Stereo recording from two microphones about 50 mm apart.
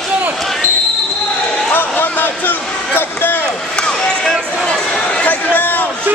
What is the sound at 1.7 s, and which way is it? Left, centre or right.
Speech, left.